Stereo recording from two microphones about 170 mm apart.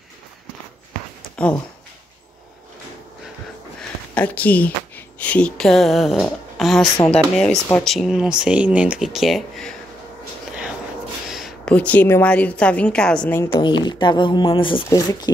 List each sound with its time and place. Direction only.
1.3 s a sound: 5° left (ahead or behind)
4.1 s a woman's voice: 10° left (ahead or behind)
7.9 s speech: centre (ahead or behind)
11.2 s a woman's voice: centre (ahead or behind)
13.4 s speech: 25° left (ahead or behind)